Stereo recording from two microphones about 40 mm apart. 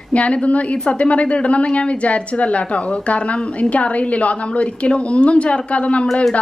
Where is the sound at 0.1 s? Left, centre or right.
Left.